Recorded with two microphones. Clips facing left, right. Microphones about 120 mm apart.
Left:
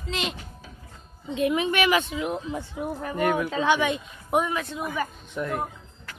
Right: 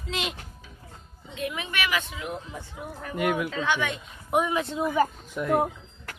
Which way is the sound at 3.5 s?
15° left (ahead or behind).